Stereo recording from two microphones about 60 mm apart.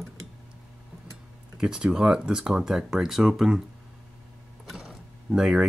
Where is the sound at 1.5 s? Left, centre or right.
Centre.